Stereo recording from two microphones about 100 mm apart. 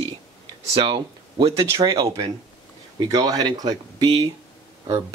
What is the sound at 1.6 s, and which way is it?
Speech, 35° right (ahead or behind).